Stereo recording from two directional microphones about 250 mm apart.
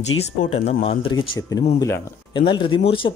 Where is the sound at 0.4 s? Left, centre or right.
Left.